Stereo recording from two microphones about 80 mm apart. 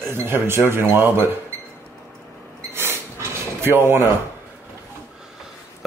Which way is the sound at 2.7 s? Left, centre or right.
Right.